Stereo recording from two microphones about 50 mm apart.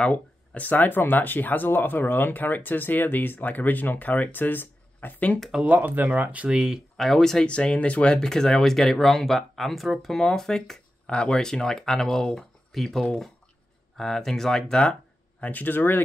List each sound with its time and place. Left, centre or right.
0.1 s speech: left
5.7 s speech: right
6.5 s speech: centre
7.0 s speech: centre
7.4 s speech: left
15.4 s speech: left